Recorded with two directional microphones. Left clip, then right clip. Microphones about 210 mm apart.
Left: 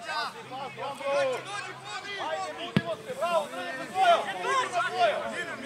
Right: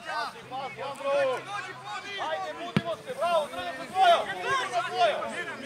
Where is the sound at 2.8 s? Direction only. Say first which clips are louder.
Right 4 dB; 50° right (ahead or behind).